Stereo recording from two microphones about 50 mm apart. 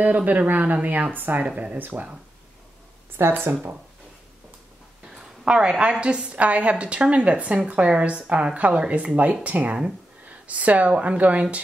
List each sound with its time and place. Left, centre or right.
0.0 s speech: right
1.4 s a woman's voice: right
3.2 s speech: right
5.1 s a woman's voice: centre